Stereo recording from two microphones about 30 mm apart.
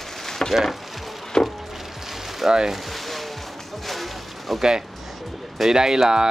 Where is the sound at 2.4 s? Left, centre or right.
Centre.